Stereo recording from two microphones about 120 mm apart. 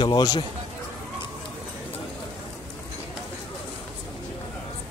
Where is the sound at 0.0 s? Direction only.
35° left (ahead or behind).